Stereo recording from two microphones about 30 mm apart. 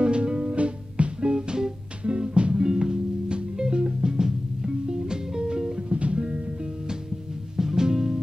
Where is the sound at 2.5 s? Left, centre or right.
Right.